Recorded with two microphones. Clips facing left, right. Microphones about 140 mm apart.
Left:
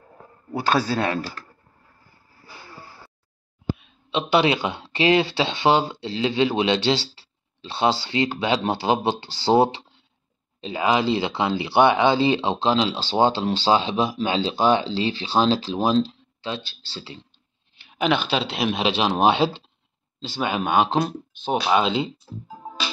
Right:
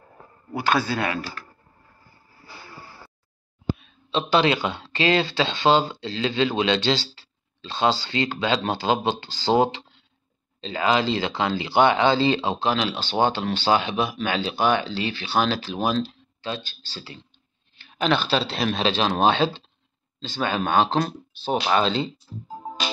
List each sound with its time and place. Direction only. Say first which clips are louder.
0.6 s speech: left 1 dB; 35° left (ahead or behind)
3.7 s a sound: even; 10° left (ahead or behind)
4.3 s speech: left 1 dB; 15° left (ahead or behind)
8.1 s speech: left 2 dB; 20° left (ahead or behind)
17.8 s speech: left 1 dB; 10° left (ahead or behind)